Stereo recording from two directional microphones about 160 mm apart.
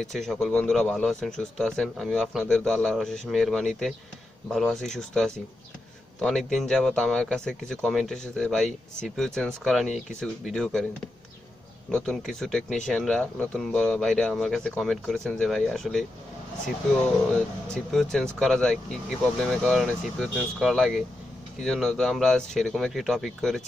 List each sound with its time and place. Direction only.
0.0 s a man's voice: centre (ahead or behind)
11.9 s a man's voice: 5° left (ahead or behind)
17.7 s a man's voice: 5° left (ahead or behind)